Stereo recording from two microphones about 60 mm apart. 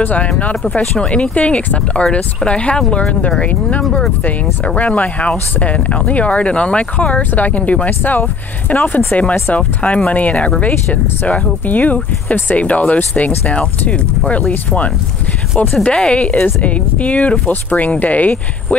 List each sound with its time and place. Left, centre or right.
0.0 s speech: left
15.8 s speech: centre